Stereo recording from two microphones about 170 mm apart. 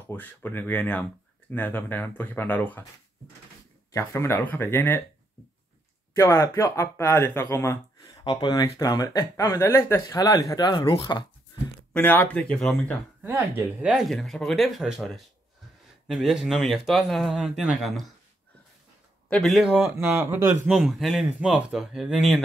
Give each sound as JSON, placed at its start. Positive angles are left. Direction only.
{"t": 0.1, "sound": "speech", "side_deg": 10}
{"t": 3.9, "sound": "speech", "side_deg": 15}
{"t": 6.1, "sound": "speech", "side_deg": 20}
{"t": 11.9, "sound": "speech", "side_deg": 10}
{"t": 13.2, "sound": "speech", "side_deg": -10}
{"t": 19.2, "sound": "speech", "side_deg": 0}
{"t": 20.2, "sound": "speech", "side_deg": -15}
{"t": 20.6, "sound": "speech", "side_deg": 0}